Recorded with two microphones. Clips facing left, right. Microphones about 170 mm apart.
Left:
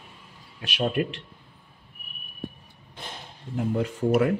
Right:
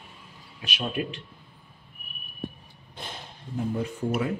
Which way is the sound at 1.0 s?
55° left (ahead or behind).